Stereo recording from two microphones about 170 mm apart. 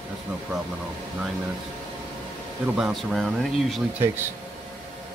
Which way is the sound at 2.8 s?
Centre (ahead or behind).